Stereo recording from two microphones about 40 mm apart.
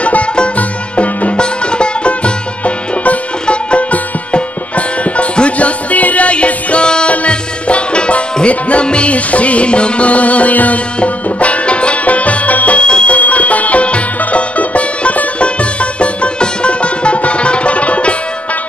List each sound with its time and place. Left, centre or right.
0.0 s music: left
1.3 s music: left
13.1 s music: left